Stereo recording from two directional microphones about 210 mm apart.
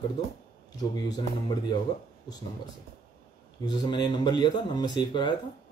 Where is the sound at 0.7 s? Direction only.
20° left (ahead or behind).